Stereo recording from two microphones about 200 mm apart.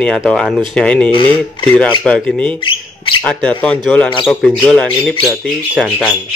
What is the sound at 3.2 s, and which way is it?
Speech, 5° left (ahead or behind).